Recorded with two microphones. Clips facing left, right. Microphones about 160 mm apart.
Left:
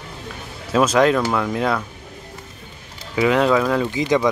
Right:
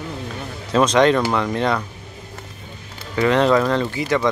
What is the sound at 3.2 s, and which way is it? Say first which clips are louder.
Speech: right 1 dB; 5° left (ahead or behind).